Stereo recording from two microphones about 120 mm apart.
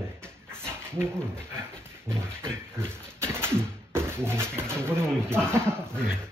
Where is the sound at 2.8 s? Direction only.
20° right (ahead or behind).